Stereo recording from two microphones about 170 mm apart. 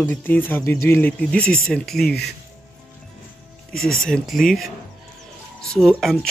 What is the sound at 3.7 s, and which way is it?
Speech, 5° left (ahead or behind).